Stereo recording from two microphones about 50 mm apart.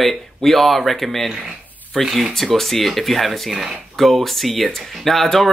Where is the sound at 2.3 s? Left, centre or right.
Centre.